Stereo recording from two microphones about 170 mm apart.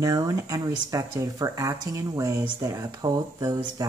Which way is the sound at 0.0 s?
20° right (ahead or behind).